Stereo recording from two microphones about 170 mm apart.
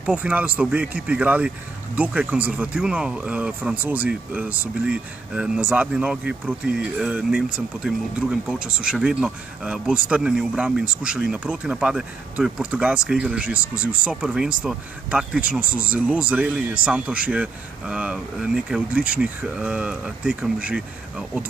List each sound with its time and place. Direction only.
0.0 s speech: 10° right (ahead or behind)